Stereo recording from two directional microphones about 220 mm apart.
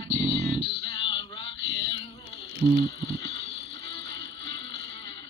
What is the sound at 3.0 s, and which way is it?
Music, 25° left (ahead or behind).